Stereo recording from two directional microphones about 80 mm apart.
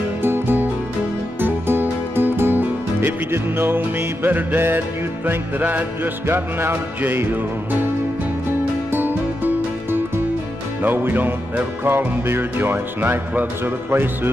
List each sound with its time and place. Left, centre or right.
0.2 s music: right
8.9 s music: right